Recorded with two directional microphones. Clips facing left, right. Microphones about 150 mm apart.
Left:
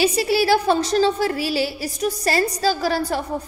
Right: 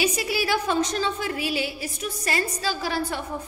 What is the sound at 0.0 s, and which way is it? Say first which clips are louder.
A woman's voice: left 7 dB; 30° left (ahead or behind).